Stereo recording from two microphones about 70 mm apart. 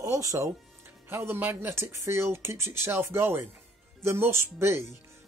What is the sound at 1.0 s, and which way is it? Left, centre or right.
Speech, right.